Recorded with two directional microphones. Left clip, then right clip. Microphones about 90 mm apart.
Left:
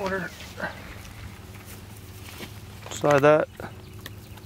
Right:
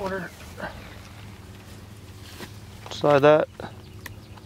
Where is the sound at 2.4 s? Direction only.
15° right (ahead or behind).